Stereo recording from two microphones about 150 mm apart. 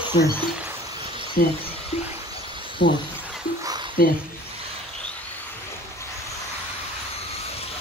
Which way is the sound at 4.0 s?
85° left.